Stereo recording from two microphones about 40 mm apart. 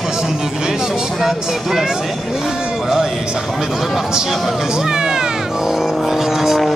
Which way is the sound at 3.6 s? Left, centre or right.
Centre.